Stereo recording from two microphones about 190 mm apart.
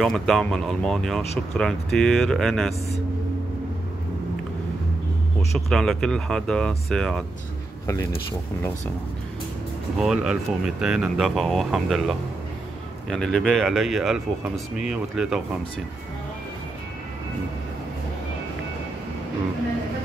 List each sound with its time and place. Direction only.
0.0 s speech: centre (ahead or behind)
5.7 s speech: centre (ahead or behind)
7.8 s speech: 15° left (ahead or behind)
9.9 s speech: 5° right (ahead or behind)